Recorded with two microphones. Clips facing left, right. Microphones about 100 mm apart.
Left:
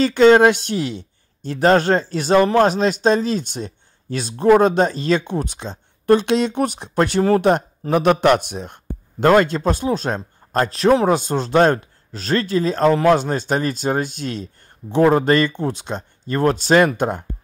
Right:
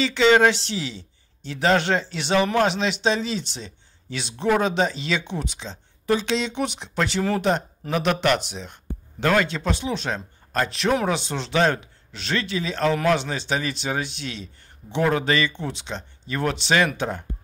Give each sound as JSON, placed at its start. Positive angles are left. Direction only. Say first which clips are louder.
{"t": 0.0, "sound": "speech", "louder": "left 6 dB", "side_deg": 45}